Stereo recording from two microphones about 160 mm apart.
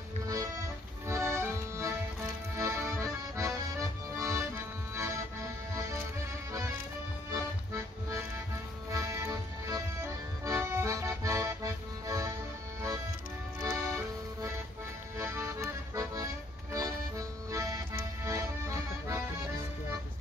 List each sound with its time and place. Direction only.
0.3 s accordion: 20° right (ahead or behind)
4.9 s music: 20° right (ahead or behind)
8.9 s accordion: 20° right (ahead or behind)
13.6 s music: 20° right (ahead or behind)
15.1 s accordion: 15° right (ahead or behind)
17.5 s accordion: 20° right (ahead or behind)